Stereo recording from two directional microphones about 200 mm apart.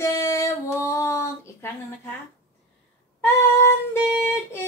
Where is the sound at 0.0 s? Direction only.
15° left (ahead or behind).